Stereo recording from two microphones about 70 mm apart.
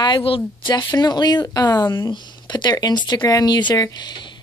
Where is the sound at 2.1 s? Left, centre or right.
Left.